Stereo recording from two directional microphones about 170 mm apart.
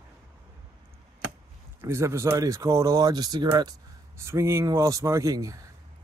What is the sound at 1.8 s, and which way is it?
Speech, 15° right (ahead or behind).